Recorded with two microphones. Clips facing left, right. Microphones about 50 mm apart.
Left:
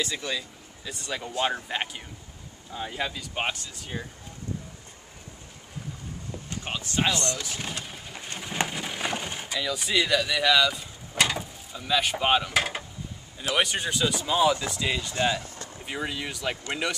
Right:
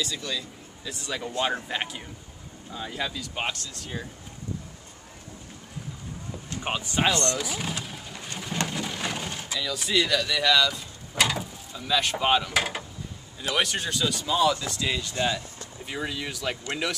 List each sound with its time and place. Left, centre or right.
0.0 s speech: left
0.8 s speech: centre
6.6 s speech: centre
7.3 s pigeon: centre
13.4 s speech: centre